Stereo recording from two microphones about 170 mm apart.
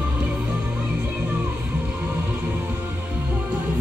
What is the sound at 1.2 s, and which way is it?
Music, 10° right (ahead or behind).